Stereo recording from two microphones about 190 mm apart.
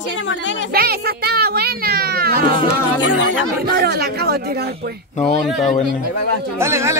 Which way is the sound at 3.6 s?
55° right (ahead or behind).